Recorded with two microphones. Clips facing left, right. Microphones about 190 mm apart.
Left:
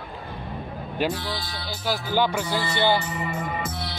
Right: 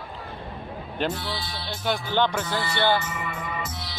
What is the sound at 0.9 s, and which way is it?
Speech, centre (ahead or behind).